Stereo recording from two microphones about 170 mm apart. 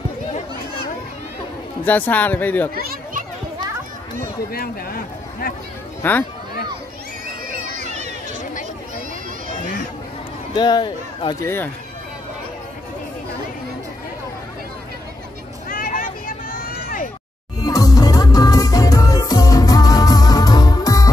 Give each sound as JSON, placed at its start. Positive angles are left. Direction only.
{"t": 1.9, "sound": "speech", "side_deg": 10}
{"t": 2.7, "sound": "children playing", "side_deg": -60}
{"t": 4.5, "sound": "speech", "side_deg": 60}
{"t": 6.0, "sound": "speech", "side_deg": 15}
{"t": 7.8, "sound": "a sound", "side_deg": -45}
{"t": 10.5, "sound": "speech", "side_deg": 25}
{"t": 11.4, "sound": "speech", "side_deg": 10}
{"t": 15.7, "sound": "a sound", "side_deg": 55}
{"t": 17.6, "sound": "music", "side_deg": 20}